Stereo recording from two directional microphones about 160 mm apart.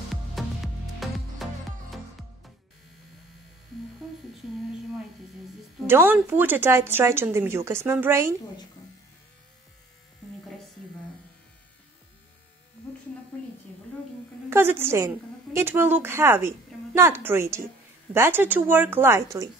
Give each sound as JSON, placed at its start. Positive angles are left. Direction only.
{"t": 0.4, "sound": "music", "side_deg": 0}
{"t": 5.9, "sound": "speech", "side_deg": -15}
{"t": 14.5, "sound": "a woman's voice", "side_deg": -15}